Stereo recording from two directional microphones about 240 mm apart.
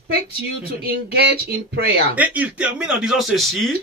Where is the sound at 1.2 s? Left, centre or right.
Right.